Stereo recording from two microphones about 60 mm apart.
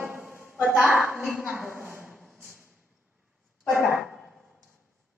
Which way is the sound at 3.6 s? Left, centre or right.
Right.